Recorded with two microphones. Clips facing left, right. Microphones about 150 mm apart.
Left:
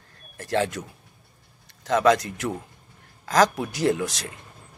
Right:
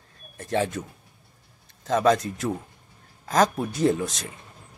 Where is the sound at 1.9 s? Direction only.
75° left (ahead or behind).